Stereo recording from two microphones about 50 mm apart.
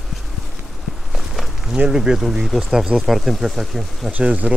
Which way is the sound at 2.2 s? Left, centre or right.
Centre.